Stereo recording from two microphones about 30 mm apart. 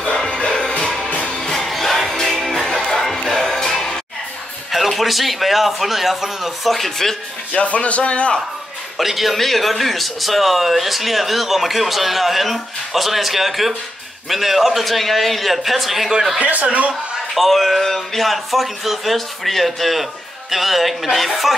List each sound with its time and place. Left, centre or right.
0.5 s music: centre
2.7 s music: left
3.2 s music: centre
4.6 s a man's voice: centre
6.7 s speech: centre
7.6 s speech: left
8.9 s a man's voice: centre
16.6 s speech: right
17.3 s a man's voice: centre